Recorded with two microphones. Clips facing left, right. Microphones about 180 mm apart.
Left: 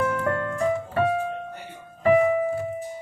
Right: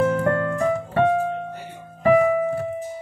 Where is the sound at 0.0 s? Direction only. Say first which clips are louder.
Right 5 dB; 40° right (ahead or behind).